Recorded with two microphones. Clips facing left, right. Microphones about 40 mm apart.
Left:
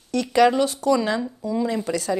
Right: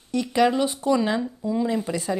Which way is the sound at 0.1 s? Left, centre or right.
Left.